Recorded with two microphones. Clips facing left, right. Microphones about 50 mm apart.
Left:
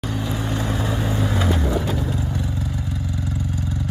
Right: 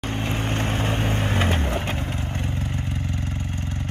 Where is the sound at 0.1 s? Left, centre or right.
Right.